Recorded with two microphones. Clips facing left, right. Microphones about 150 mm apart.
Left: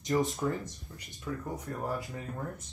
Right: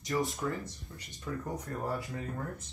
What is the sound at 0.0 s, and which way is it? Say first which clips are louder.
Speech: left 3 dB; 20° left (ahead or behind).